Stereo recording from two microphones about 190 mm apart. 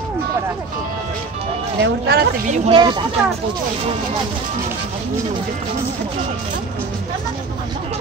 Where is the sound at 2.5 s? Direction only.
25° right (ahead or behind).